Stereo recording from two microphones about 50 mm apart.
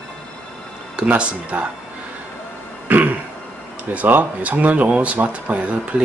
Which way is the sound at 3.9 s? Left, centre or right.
Right.